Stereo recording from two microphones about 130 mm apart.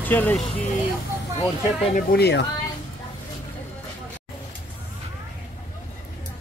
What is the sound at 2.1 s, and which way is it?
Speech, 90° left.